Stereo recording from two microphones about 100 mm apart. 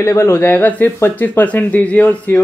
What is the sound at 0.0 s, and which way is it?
Speech, 25° left (ahead or behind).